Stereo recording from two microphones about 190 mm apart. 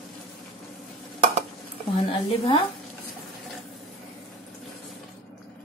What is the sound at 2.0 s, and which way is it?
Speech, 25° left (ahead or behind).